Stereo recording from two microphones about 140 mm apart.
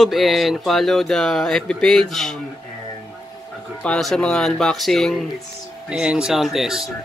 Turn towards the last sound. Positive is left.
turn(degrees=-5)  # may be behind; listen again after turning